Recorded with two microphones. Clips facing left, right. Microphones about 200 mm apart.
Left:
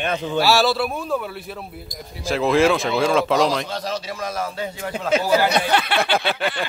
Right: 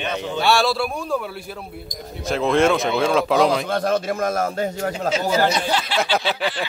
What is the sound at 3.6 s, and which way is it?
A man's voice, 55° right (ahead or behind).